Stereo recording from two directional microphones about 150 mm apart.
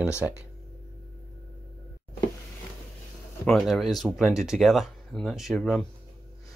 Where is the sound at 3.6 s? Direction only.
Centre (ahead or behind).